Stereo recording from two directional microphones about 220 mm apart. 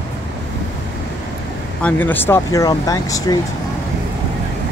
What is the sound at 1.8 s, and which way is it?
Speech, 10° left (ahead or behind).